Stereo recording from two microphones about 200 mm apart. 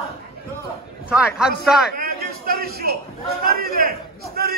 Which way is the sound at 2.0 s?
50° right (ahead or behind).